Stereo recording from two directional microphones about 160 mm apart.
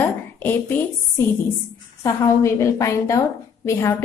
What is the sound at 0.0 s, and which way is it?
A woman's voice, 15° left (ahead or behind).